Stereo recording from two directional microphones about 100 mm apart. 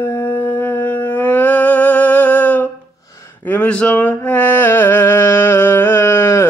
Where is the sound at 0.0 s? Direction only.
20° left (ahead or behind).